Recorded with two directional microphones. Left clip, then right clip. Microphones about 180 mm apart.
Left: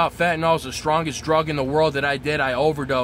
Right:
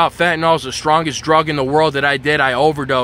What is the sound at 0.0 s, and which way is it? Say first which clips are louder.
Speech: right 6 dB; 15° right (ahead or behind).